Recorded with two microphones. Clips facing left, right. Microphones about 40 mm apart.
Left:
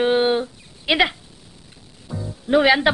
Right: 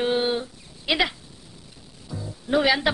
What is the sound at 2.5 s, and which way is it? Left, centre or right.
Speech, left.